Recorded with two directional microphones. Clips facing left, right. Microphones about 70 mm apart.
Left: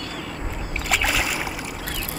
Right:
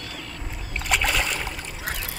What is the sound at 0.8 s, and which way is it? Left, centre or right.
Boat, centre.